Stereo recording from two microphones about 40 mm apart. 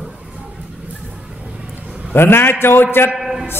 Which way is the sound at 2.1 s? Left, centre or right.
Left.